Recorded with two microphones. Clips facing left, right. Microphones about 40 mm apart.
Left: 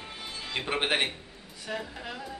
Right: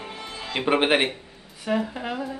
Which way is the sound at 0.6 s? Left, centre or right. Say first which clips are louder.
Right 8 dB; right.